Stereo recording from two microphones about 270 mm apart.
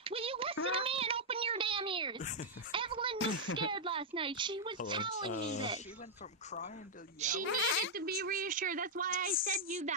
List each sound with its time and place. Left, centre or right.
0.0 s a sound: right
3.2 s a child's voice: left
3.5 s speech: centre
5.3 s speech: left
7.2 s a woman's voice: right
7.4 s speech: left
7.9 s a woman's voice: right